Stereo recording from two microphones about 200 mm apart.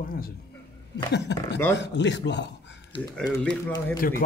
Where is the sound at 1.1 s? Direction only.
60° left (ahead or behind).